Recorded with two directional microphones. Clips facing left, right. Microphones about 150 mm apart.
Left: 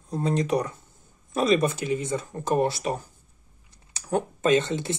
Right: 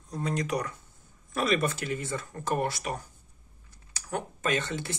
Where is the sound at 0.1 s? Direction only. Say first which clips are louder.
Left 6 dB; 25° left (ahead or behind).